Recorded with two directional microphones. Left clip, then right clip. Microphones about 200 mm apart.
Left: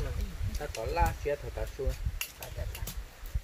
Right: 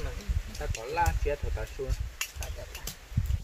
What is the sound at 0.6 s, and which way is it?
Speech, 5° left (ahead or behind).